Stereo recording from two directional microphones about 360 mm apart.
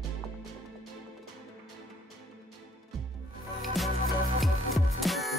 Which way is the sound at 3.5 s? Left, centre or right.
Centre.